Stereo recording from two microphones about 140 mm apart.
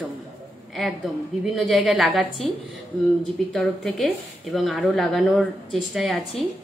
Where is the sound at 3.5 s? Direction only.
Centre (ahead or behind).